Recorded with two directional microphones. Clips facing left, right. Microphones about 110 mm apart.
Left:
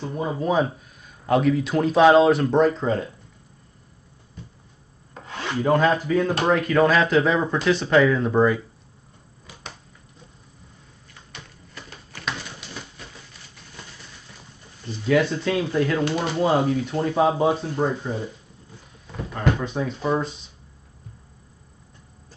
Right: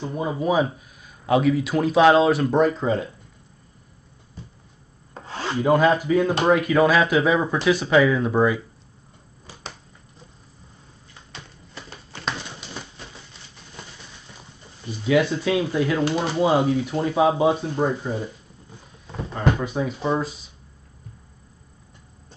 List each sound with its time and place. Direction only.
0.0 s speech: 10° right (ahead or behind)
5.1 s rub: 30° right (ahead or behind)
5.6 s speech: 10° right (ahead or behind)
11.7 s a sound: 25° right (ahead or behind)
14.9 s speech: 5° right (ahead or behind)
19.6 s speech: 10° right (ahead or behind)